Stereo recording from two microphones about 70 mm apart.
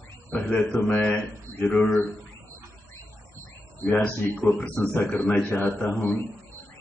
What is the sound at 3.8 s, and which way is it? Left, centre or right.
A man's voice, left.